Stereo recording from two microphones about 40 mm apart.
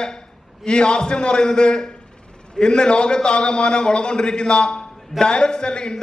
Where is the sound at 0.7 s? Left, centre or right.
Left.